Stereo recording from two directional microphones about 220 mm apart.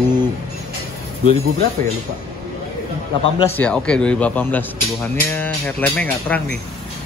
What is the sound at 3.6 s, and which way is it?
A man's voice, 5° left (ahead or behind).